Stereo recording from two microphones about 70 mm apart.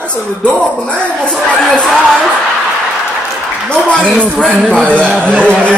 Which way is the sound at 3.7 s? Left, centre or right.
Centre.